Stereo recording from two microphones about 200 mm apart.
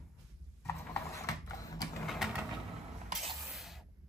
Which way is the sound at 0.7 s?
15° left (ahead or behind).